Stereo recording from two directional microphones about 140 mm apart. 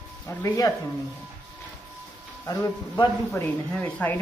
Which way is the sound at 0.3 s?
20° left (ahead or behind).